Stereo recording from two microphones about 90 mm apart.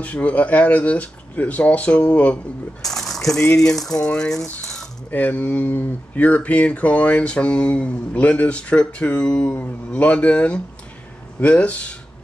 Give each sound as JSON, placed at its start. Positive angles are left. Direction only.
{"t": 0.0, "sound": "speech", "side_deg": 15}
{"t": 2.8, "sound": "speech", "side_deg": 5}
{"t": 5.1, "sound": "speech", "side_deg": 15}